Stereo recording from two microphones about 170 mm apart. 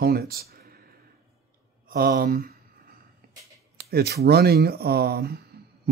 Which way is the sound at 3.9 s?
70° right (ahead or behind).